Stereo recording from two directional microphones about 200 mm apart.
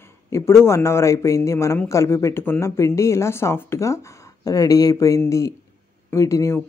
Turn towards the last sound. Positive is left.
turn(degrees=15)  # may be behind; listen again after turning